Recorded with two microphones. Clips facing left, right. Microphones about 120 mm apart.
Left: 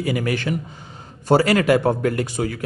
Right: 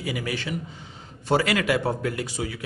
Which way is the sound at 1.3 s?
40° left (ahead or behind).